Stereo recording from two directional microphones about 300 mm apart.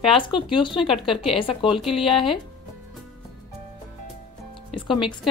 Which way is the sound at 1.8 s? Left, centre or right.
Centre.